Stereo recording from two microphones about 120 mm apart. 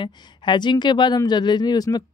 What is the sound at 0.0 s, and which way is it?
Speech, 40° left (ahead or behind).